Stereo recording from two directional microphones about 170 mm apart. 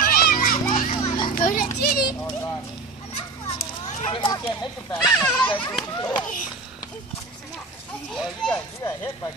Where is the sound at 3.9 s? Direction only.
35° left (ahead or behind).